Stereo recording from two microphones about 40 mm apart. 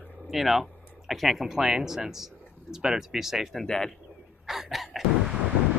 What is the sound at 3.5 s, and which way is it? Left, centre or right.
Speech, centre.